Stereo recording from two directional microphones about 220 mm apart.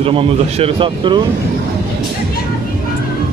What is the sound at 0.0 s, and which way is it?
Speech, 25° right (ahead or behind).